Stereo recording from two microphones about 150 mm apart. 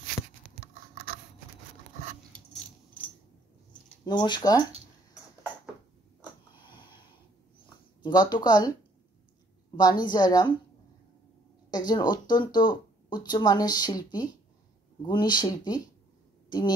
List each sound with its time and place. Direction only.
4.0 s speech: 30° left (ahead or behind)
8.0 s speech: 30° left (ahead or behind)
9.8 s speech: 30° left (ahead or behind)
11.7 s speech: 25° left (ahead or behind)